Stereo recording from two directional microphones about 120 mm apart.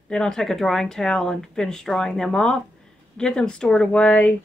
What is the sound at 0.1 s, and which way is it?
A woman's voice, 5° left (ahead or behind).